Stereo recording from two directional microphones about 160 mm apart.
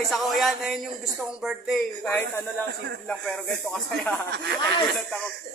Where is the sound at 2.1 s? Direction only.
15° left (ahead or behind).